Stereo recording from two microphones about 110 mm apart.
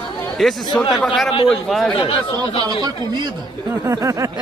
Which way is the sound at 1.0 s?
5° left (ahead or behind).